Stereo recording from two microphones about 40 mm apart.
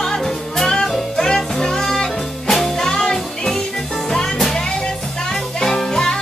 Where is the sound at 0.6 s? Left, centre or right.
Centre.